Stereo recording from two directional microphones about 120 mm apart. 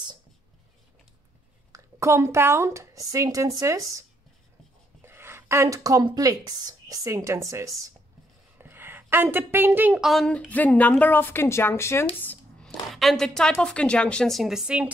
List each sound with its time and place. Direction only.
1.7 s a woman's voice: 25° right (ahead or behind)
5.0 s a woman's voice: 20° right (ahead or behind)
10.0 s a woman's voice: 5° left (ahead or behind); by 12.1 s 20° left (ahead or behind)
12.6 s a woman's voice: centre (ahead or behind)